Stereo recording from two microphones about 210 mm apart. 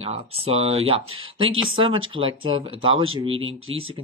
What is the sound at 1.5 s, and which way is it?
Speech, 70° right (ahead or behind).